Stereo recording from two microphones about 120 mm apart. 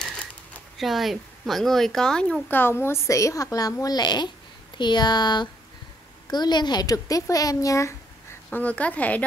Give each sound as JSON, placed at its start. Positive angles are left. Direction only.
{"t": 0.7, "sound": "speech", "side_deg": 0}
{"t": 2.4, "sound": "a woman's voice", "side_deg": 15}
{"t": 8.5, "sound": "speech", "side_deg": 10}